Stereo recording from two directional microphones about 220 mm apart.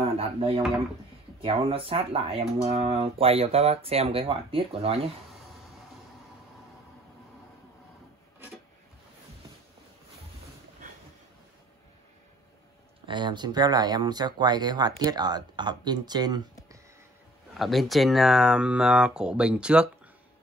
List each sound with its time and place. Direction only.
0.0 s dishes: 25° right (ahead or behind)
1.4 s speech: 25° right (ahead or behind)
13.0 s speech: 20° right (ahead or behind)
17.6 s speech: centre (ahead or behind)